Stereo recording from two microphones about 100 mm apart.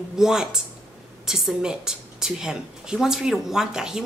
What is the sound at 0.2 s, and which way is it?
A woman's voice, 5° right (ahead or behind).